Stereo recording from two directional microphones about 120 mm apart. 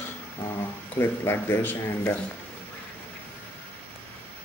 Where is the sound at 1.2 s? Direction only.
20° left (ahead or behind).